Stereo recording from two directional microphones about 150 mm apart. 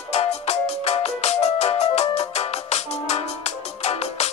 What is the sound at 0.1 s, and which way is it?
Music, 45° left (ahead or behind).